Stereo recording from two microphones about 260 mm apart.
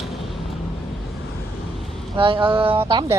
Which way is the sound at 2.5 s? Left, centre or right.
Centre.